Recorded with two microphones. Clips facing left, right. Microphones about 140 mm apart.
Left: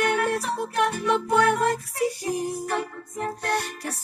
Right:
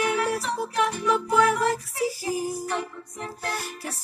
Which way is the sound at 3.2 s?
60° left (ahead or behind).